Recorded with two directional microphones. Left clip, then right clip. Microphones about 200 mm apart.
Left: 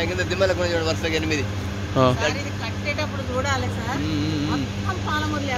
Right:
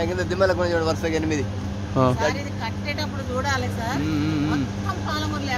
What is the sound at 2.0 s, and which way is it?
Speech, 10° right (ahead or behind).